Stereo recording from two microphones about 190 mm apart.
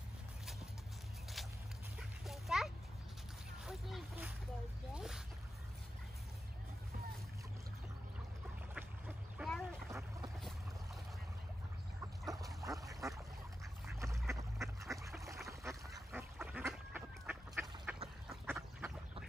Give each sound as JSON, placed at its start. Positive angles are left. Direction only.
{"t": 2.0, "sound": "dog", "side_deg": 0}
{"t": 3.6, "sound": "a sound", "side_deg": 0}
{"t": 8.7, "sound": "duck", "side_deg": -5}
{"t": 9.8, "sound": "boat", "side_deg": -15}
{"t": 12.3, "sound": "a sound", "side_deg": -20}
{"t": 13.9, "sound": "duck", "side_deg": -15}